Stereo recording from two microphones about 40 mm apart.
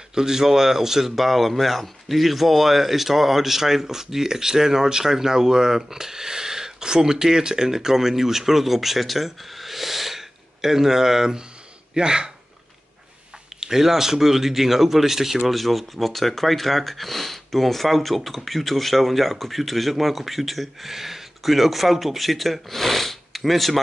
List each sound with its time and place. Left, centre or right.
0.1 s speech: centre
13.6 s speech: centre
15.5 s speech: centre